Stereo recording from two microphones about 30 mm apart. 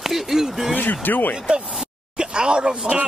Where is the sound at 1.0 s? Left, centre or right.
Left.